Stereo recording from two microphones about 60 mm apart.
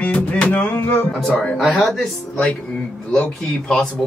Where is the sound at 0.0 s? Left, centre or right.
Left.